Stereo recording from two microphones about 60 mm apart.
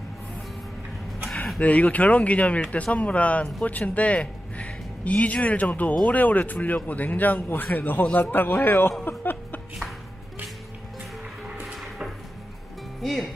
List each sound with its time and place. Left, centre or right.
1.6 s a man's voice: left
13.0 s speech: centre